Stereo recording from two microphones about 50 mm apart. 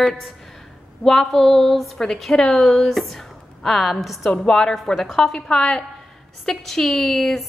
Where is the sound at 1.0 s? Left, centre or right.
Centre.